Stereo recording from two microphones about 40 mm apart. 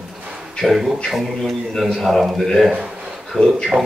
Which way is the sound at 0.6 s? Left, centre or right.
Centre.